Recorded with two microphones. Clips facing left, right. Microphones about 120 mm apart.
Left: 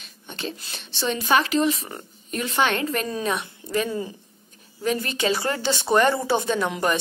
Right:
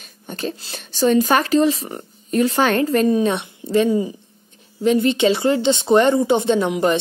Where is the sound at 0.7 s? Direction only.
40° right (ahead or behind).